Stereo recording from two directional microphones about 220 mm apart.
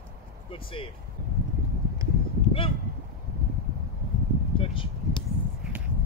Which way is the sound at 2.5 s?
25° left (ahead or behind).